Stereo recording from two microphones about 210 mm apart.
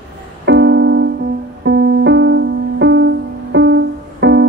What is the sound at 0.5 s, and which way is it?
Music, 60° right (ahead or behind).